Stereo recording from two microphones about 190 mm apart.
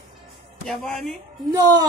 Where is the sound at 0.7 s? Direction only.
5° left (ahead or behind).